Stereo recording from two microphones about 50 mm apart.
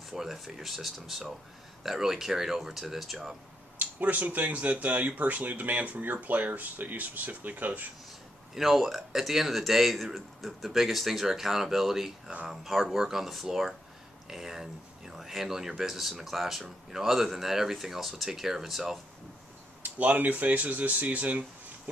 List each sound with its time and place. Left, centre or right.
0.1 s speech: centre
3.7 s speech: right
8.5 s speech: centre
19.8 s speech: right